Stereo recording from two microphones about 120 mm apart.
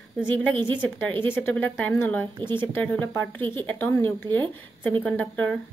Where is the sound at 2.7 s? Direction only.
15° left (ahead or behind).